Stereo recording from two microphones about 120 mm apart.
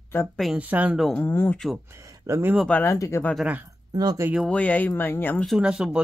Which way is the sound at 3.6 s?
30° right (ahead or behind).